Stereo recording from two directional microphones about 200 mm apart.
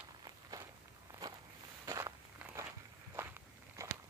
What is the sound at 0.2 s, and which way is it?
Walk, 20° right (ahead or behind).